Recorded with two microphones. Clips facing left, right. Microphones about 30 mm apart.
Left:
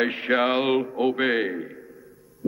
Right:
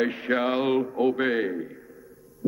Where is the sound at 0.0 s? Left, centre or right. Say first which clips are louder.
Left 2 dB; left.